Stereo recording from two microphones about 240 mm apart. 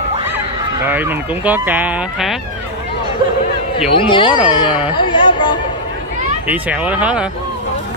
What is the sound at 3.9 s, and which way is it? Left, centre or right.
Speech, left.